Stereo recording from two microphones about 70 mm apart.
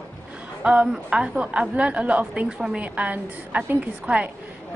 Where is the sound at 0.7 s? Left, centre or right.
Centre.